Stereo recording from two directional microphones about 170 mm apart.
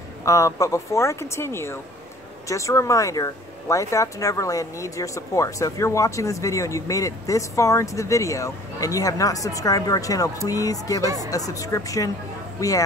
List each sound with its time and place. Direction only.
0.2 s speech: 20° left (ahead or behind)